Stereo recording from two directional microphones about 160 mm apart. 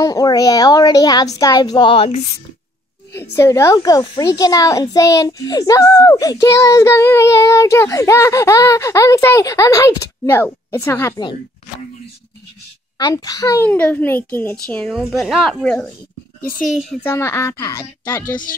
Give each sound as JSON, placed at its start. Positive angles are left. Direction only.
{"t": 0.0, "sound": "a child's voice", "side_deg": 25}
{"t": 1.4, "sound": "child singing", "side_deg": 25}
{"t": 3.1, "sound": "a child's voice", "side_deg": 15}
{"t": 12.9, "sound": "a child's voice", "side_deg": 25}
{"t": 13.7, "sound": "a child's voice", "side_deg": 10}
{"t": 17.0, "sound": "a child's voice", "side_deg": 15}